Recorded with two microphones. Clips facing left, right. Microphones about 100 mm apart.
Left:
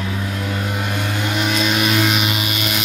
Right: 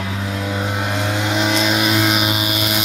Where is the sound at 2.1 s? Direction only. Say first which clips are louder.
Right 2 dB; 30° right (ahead or behind).